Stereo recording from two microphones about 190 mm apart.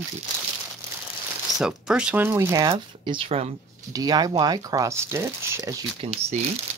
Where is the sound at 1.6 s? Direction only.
5° right (ahead or behind).